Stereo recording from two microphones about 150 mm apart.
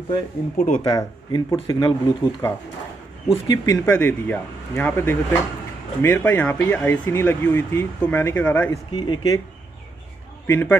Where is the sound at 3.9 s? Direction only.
10° left (ahead or behind).